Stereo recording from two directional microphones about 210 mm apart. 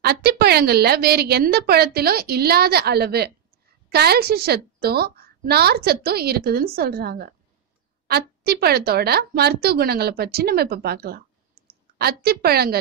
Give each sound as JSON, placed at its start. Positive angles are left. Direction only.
{"t": 0.0, "sound": "a woman's voice", "side_deg": -50}
{"t": 11.6, "sound": "clicking", "side_deg": -45}
{"t": 12.0, "sound": "a woman's voice", "side_deg": -50}